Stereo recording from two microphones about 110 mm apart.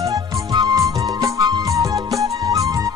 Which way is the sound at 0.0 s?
35° right (ahead or behind).